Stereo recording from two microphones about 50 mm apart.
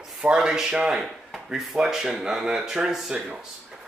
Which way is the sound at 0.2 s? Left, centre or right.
Right.